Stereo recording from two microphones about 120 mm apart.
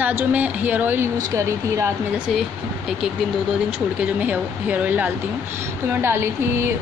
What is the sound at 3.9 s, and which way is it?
Speech, 15° right (ahead or behind).